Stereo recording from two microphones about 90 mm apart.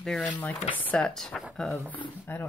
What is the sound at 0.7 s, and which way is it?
Speech, 20° left (ahead or behind).